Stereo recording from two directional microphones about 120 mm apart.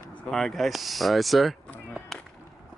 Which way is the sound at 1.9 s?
5° left (ahead or behind).